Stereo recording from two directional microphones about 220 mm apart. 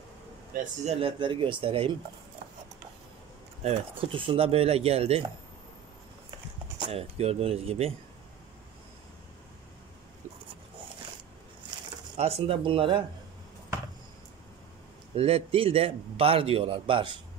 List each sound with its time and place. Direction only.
0.8 s a man's voice: 25° right (ahead or behind)
3.6 s a man's voice: 25° right (ahead or behind)
6.8 s a man's voice: 25° right (ahead or behind)
12.2 s a man's voice: 30° right (ahead or behind)
15.1 s a man's voice: 25° right (ahead or behind)